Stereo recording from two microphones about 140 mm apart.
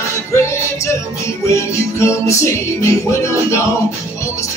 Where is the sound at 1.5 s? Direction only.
20° left (ahead or behind).